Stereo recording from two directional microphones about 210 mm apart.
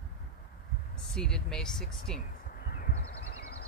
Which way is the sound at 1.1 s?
5° left (ahead or behind).